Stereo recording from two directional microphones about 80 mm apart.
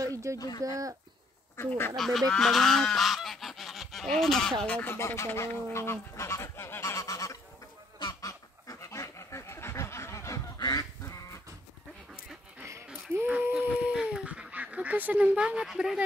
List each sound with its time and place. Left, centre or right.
0.0 s speech: right
2.0 s goose: centre
4.6 s speech: centre
4.9 s speech: left
8.0 s goose: left
10.6 s duck: left
12.6 s a sound: right
13.4 s goose: right; by 16.0 s centre